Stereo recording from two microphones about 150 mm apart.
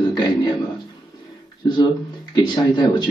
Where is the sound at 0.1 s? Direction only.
30° left (ahead or behind).